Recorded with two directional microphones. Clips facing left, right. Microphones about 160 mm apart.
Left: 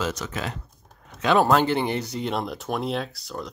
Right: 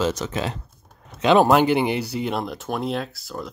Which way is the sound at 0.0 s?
25° right (ahead or behind).